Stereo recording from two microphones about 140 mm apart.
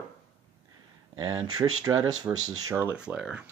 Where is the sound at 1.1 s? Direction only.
30° right (ahead or behind).